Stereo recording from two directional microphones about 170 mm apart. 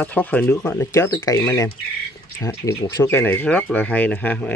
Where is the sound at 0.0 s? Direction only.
10° left (ahead or behind).